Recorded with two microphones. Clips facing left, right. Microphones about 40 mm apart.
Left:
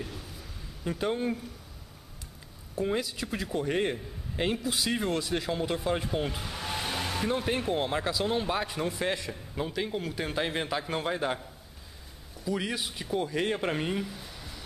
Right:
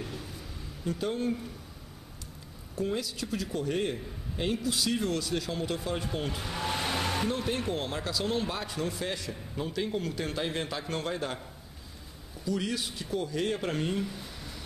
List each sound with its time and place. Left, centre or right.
0.0 s a sound: centre
0.8 s speech: left
2.7 s a man's voice: centre
6.4 s car: centre
7.2 s a man's voice: centre
12.4 s speech: centre
14.0 s a sound: centre